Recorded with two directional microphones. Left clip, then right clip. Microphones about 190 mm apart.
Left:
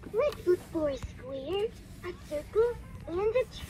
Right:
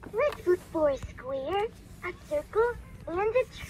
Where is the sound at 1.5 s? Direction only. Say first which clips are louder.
Left 2 dB; 5° left (ahead or behind).